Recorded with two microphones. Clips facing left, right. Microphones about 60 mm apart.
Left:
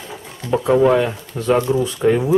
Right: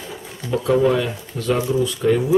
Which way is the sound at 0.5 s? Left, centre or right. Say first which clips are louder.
Left 3 dB; left.